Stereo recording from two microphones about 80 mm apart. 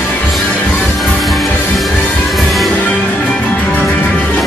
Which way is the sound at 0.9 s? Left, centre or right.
Centre.